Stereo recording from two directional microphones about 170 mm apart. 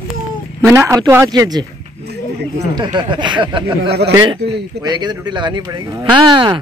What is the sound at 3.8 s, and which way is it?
Speech, 75° right (ahead or behind).